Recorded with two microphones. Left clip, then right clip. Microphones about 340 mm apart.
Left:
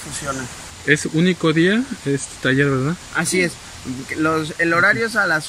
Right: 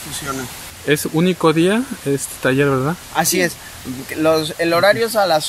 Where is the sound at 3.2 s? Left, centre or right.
Centre.